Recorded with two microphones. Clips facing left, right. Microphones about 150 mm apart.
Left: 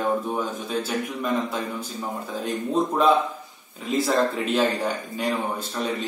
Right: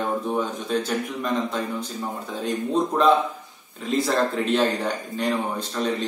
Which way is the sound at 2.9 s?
5° left (ahead or behind).